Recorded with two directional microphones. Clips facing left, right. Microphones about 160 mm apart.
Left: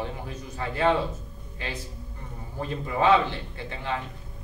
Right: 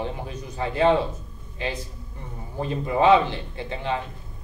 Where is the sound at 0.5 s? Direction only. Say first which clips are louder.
Right 4 dB; 20° right (ahead or behind).